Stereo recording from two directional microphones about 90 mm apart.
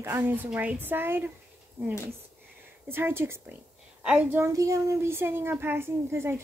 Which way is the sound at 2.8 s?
25° right (ahead or behind).